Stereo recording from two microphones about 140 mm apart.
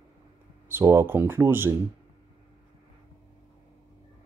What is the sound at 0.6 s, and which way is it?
Speech, 15° right (ahead or behind).